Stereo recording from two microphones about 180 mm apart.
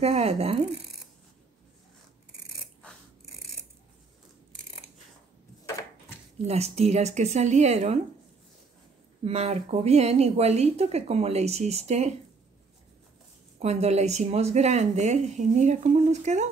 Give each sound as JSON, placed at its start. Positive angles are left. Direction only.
{"t": 0.0, "sound": "a woman's voice", "side_deg": -35}
{"t": 6.3, "sound": "a woman's voice", "side_deg": -35}
{"t": 9.2, "sound": "a woman's voice", "side_deg": -35}
{"t": 13.6, "sound": "a woman's voice", "side_deg": -35}